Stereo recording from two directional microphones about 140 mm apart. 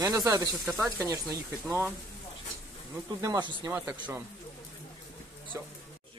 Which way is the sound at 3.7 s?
15° right (ahead or behind).